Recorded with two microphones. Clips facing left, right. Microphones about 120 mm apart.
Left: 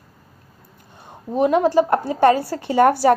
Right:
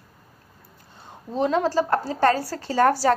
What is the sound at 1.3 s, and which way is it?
Speech, 15° left (ahead or behind).